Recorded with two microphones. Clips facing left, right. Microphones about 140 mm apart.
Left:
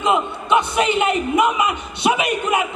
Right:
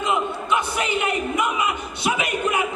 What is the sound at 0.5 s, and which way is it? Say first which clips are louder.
A man's voice: left 8 dB; 25° left (ahead or behind).